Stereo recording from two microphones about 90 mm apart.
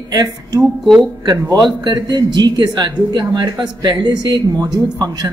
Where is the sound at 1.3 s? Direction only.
40° right (ahead or behind).